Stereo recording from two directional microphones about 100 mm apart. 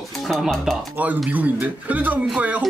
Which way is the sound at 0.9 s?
15° right (ahead or behind).